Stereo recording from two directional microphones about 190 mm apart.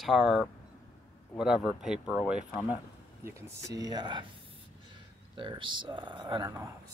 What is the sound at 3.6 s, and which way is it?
Speech, 20° right (ahead or behind).